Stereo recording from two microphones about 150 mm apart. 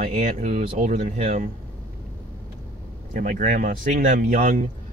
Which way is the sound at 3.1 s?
60° right (ahead or behind).